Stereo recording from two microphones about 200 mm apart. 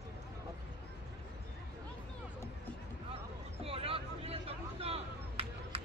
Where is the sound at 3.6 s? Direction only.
30° right (ahead or behind).